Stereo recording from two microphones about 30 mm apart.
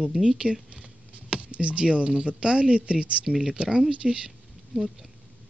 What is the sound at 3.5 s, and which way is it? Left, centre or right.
Speech, right.